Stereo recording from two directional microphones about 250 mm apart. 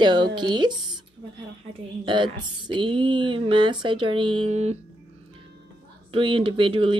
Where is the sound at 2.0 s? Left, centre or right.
Centre.